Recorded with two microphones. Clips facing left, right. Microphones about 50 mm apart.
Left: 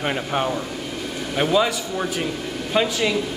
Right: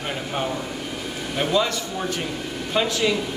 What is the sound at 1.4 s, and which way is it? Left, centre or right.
Speech, centre.